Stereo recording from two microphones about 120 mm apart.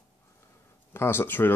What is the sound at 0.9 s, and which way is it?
Speech, 20° left (ahead or behind).